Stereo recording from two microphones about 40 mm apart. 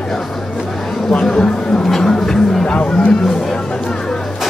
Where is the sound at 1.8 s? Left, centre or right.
Centre.